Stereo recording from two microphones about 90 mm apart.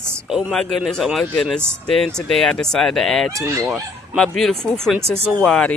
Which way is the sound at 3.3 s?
35° right (ahead or behind).